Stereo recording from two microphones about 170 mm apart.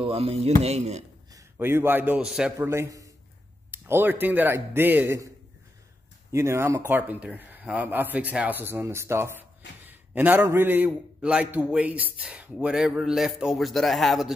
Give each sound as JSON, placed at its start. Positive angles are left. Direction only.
{"t": 0.0, "sound": "speech", "side_deg": -35}
{"t": 1.3, "sound": "a man's voice", "side_deg": -15}
{"t": 6.3, "sound": "a man's voice", "side_deg": -15}